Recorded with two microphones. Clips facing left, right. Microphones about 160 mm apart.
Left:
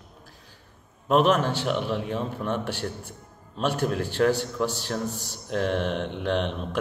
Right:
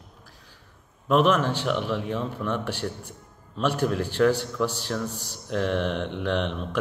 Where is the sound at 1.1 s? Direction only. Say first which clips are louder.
Even; 45° left (ahead or behind).